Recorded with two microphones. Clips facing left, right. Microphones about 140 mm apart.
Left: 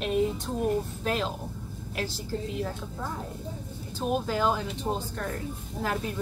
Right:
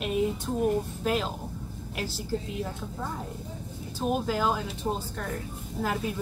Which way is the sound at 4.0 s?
5° right (ahead or behind).